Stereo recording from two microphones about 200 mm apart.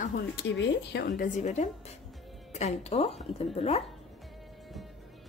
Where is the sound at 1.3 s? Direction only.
35° left (ahead or behind).